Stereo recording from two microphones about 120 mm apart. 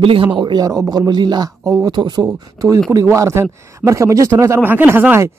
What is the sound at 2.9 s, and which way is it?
A man's voice, 25° right (ahead or behind).